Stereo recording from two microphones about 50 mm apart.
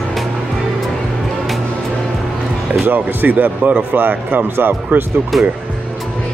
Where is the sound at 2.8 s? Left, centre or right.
Right.